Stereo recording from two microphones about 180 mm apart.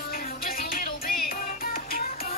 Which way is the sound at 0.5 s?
55° left (ahead or behind).